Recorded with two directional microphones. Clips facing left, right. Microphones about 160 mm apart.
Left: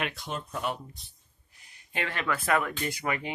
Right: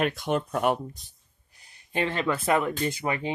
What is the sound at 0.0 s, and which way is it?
Speech, 50° right (ahead or behind).